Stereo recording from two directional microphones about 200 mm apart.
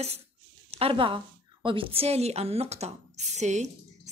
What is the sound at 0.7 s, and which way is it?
A woman's voice, 30° right (ahead or behind).